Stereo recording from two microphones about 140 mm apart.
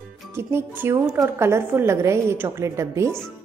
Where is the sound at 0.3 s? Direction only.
15° right (ahead or behind).